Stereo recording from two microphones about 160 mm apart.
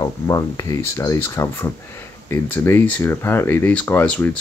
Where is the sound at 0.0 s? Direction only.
20° left (ahead or behind).